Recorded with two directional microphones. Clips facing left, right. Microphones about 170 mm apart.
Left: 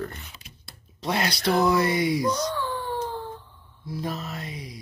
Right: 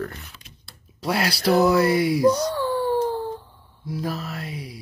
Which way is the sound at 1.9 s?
5° right (ahead or behind).